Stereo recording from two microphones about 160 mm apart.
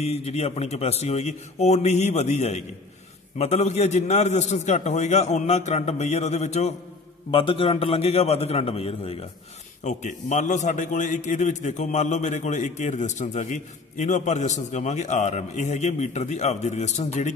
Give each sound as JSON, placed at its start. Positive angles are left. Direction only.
{"t": 0.0, "sound": "a man's voice", "side_deg": 40}
{"t": 9.8, "sound": "a man's voice", "side_deg": 50}